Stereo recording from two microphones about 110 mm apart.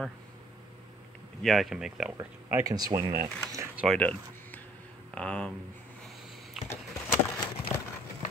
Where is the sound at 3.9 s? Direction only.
15° left (ahead or behind).